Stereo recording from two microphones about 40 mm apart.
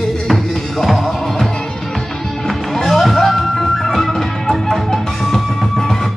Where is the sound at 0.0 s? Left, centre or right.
Centre.